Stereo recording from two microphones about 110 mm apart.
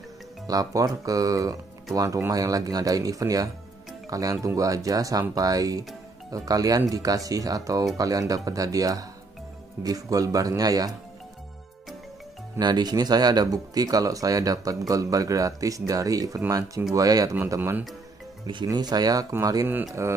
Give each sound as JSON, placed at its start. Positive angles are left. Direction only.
{"t": 0.5, "sound": "speech", "side_deg": -35}
{"t": 12.5, "sound": "speech", "side_deg": -40}
{"t": 17.6, "sound": "speech", "side_deg": -15}
{"t": 18.5, "sound": "speech", "side_deg": -40}